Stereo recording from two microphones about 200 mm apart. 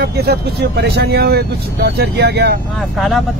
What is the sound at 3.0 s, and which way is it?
Speech, centre (ahead or behind).